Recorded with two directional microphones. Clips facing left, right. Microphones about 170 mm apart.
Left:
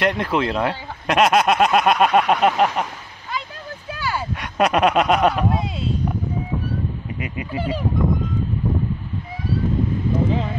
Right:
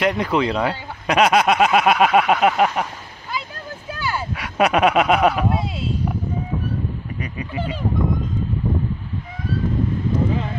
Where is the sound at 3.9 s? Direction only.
Centre (ahead or behind).